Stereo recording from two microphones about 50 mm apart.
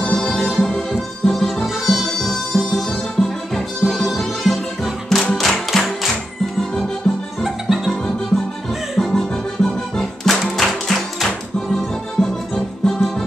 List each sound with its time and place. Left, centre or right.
0.0 s music: centre
7.4 s music: centre
8.3 s music: centre